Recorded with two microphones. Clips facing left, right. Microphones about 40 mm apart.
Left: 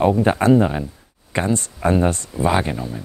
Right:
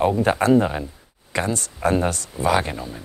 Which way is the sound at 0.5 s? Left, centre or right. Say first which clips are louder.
Left 2 dB; centre.